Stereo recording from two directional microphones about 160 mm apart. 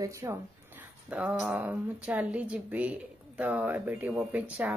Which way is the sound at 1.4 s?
10° right (ahead or behind).